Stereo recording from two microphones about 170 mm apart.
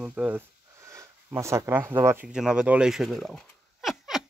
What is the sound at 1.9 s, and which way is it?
Speech, 15° right (ahead or behind).